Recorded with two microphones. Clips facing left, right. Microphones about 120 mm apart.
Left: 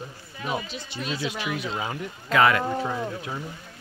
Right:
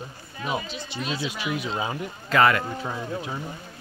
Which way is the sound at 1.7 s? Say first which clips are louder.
Right 2 dB; 15° right (ahead or behind).